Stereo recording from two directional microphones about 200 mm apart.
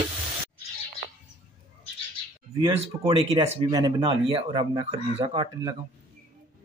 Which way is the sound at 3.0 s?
25° right (ahead or behind).